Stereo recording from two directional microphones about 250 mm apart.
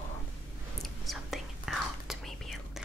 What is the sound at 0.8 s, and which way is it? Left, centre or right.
Whispering, centre.